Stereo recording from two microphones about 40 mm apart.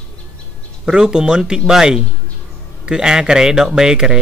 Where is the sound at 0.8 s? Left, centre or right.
Centre.